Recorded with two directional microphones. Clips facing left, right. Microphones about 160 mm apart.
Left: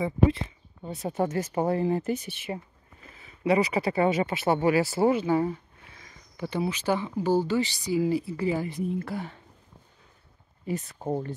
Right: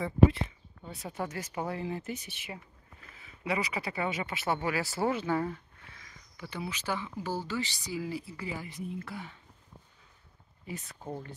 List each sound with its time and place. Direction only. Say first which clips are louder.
1.0 s speech: left 9 dB; 45° left (ahead or behind); by 5.6 s 15° left (ahead or behind)
5.9 s a sound: left 11 dB; 30° left (ahead or behind)
6.7 s speech: left 8 dB; 20° left (ahead or behind)
8.4 s speech: left 11 dB; 35° left (ahead or behind)
10.7 s speech: left 10 dB; 40° left (ahead or behind)